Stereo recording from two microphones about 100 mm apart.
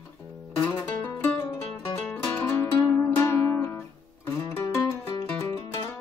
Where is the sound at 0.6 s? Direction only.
25° left (ahead or behind).